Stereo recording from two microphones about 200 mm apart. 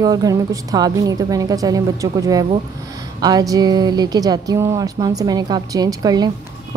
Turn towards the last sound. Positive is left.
turn(degrees=-20)  # may be behind; listen again after turning